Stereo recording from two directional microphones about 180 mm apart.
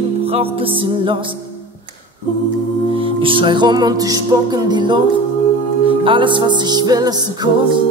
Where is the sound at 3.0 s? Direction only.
30° right (ahead or behind).